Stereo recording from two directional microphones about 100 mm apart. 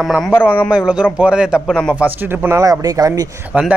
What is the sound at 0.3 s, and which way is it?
Speech, 20° left (ahead or behind).